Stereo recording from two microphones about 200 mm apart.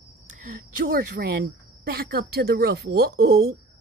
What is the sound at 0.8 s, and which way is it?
Speech, 50° right (ahead or behind).